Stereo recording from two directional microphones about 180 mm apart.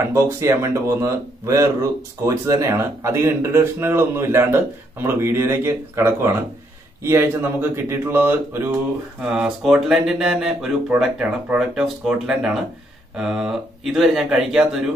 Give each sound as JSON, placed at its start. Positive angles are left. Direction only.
{"t": 0.1, "sound": "a man's voice", "side_deg": -15}